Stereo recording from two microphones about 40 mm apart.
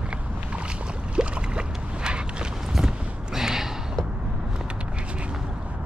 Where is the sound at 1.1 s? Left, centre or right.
Right.